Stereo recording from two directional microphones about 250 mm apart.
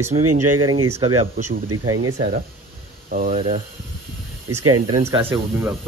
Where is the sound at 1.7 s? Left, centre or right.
Right.